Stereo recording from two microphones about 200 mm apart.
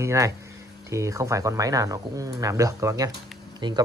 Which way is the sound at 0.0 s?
15° right (ahead or behind).